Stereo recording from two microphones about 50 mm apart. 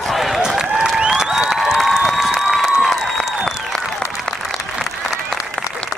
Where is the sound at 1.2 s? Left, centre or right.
Centre.